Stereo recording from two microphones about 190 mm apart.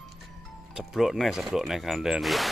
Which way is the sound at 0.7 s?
Centre (ahead or behind).